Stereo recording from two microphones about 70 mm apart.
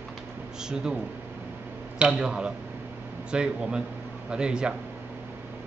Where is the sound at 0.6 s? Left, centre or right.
Centre.